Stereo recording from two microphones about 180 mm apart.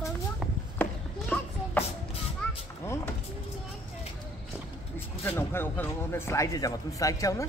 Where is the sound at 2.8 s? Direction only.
15° left (ahead or behind).